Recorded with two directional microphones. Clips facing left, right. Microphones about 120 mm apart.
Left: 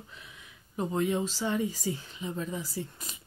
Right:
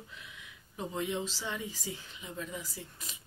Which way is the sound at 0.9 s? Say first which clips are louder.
Left 6 dB; 50° left (ahead or behind).